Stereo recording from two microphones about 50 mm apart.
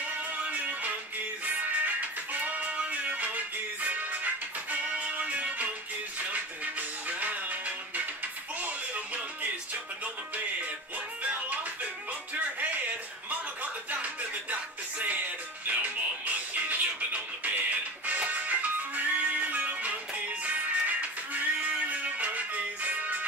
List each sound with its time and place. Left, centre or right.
0.4 s music: right
11.2 s music: right
13.9 s music: right